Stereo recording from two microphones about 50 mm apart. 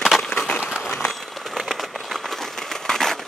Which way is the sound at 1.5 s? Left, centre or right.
Centre.